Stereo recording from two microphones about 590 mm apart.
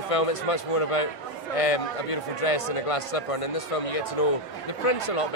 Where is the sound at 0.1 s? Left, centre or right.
Left.